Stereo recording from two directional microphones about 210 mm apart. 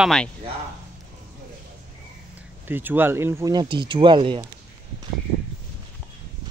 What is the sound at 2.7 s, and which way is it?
Speech, 10° right (ahead or behind).